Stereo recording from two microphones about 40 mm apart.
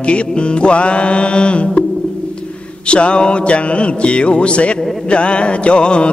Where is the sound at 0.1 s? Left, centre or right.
Left.